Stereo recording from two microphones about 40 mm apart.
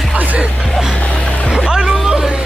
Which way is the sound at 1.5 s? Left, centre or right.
Centre.